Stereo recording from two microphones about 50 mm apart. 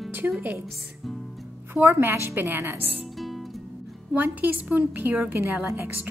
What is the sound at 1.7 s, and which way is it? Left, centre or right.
A woman's voice, right.